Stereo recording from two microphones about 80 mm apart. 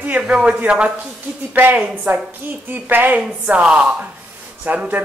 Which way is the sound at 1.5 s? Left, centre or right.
Right.